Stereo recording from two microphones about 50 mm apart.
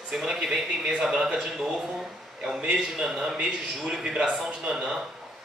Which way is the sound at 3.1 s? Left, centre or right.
Centre.